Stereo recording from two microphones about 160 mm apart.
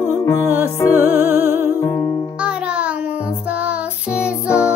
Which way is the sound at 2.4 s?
5° right (ahead or behind).